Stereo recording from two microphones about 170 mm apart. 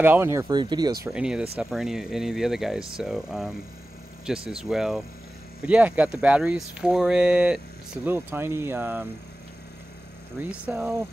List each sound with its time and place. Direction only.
0.0 s speech: 15° right (ahead or behind)
1.0 s speech: 5° right (ahead or behind)
10.4 s speech: 10° right (ahead or behind)